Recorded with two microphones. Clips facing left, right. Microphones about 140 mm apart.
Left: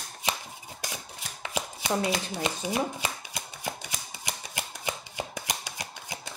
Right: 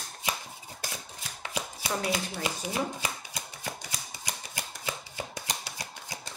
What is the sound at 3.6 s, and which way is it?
Chopping, 20° left (ahead or behind).